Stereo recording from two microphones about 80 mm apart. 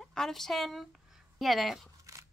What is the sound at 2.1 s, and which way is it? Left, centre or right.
Scissors, right.